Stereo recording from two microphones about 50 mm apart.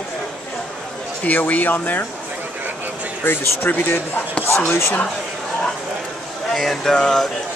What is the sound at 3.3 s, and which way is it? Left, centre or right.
Speech, left.